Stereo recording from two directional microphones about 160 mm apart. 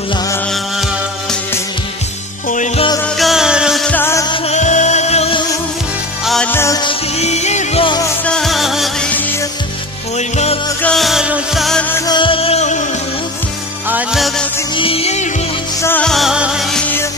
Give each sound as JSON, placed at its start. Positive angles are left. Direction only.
{"t": 3.2, "sound": "music", "side_deg": 0}
{"t": 3.9, "sound": "music", "side_deg": 15}
{"t": 4.5, "sound": "music", "side_deg": 50}
{"t": 6.2, "sound": "music", "side_deg": 5}
{"t": 6.5, "sound": "music", "side_deg": 15}
{"t": 6.8, "sound": "music", "side_deg": 35}
{"t": 8.3, "sound": "music", "side_deg": 0}
{"t": 10.1, "sound": "music", "side_deg": 45}
{"t": 10.8, "sound": "music", "side_deg": 5}
{"t": 12.1, "sound": "music", "side_deg": 30}
{"t": 13.8, "sound": "music", "side_deg": -10}
{"t": 14.8, "sound": "music", "side_deg": 35}
{"t": 15.8, "sound": "music", "side_deg": 10}
{"t": 16.1, "sound": "music", "side_deg": 0}